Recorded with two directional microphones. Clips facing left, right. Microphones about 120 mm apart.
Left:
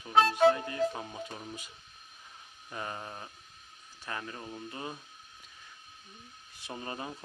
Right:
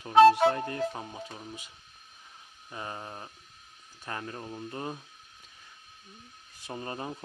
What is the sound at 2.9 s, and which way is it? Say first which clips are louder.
Speech: right 1 dB; 10° right (ahead or behind).